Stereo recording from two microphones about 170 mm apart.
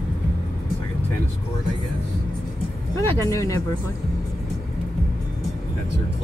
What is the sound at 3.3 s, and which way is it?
Speech, 20° left (ahead or behind).